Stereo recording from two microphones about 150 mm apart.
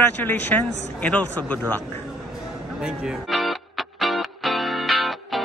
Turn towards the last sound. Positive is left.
turn(degrees=0)  # may be behind; listen again after turning